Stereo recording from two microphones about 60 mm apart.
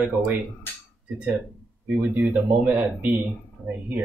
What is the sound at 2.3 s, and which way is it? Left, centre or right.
Speech, right.